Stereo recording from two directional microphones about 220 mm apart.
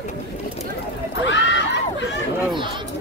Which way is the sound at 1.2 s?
55° left (ahead or behind).